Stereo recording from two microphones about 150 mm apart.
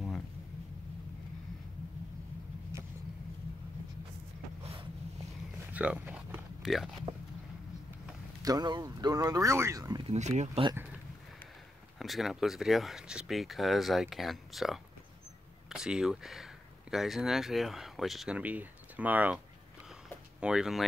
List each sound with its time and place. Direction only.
2.7 s vehicle: 20° right (ahead or behind)
5.7 s a sound: 10° right (ahead or behind)
6.6 s speech: centre (ahead or behind)
8.4 s speech: 25° right (ahead or behind)
10.0 s speech: 50° right (ahead or behind)
12.0 s speech: centre (ahead or behind)
19.9 s a sound: 5° right (ahead or behind)